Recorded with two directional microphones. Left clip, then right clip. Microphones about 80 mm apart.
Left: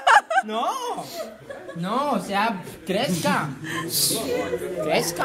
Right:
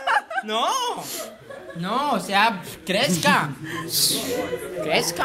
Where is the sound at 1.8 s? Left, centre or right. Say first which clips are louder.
Right 1 dB; centre.